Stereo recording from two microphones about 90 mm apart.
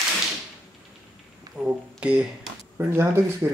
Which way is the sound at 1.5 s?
10° right (ahead or behind).